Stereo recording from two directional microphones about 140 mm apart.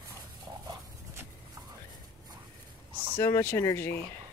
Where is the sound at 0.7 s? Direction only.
25° right (ahead or behind).